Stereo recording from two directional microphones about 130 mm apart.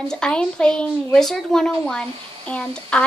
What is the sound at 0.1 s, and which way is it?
A woman's voice, 5° left (ahead or behind).